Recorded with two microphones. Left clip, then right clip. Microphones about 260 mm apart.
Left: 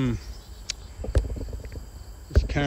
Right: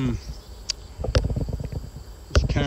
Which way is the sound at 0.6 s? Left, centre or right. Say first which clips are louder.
Right 5 dB; centre.